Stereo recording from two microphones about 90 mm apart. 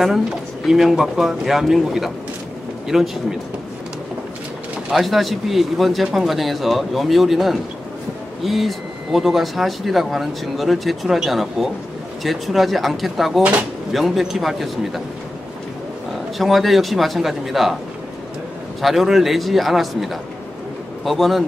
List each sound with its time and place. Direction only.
0.7 s speech: 5° right (ahead or behind)
4.8 s speech: centre (ahead or behind)
13.4 s speech: 15° right (ahead or behind)
13.9 s speech: centre (ahead or behind)
16.3 s speech: centre (ahead or behind)
18.8 s speech: centre (ahead or behind)